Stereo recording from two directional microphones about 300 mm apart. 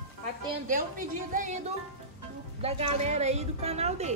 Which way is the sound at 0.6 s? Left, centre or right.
Right.